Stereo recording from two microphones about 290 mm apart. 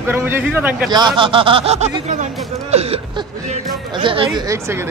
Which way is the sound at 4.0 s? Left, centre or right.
Centre.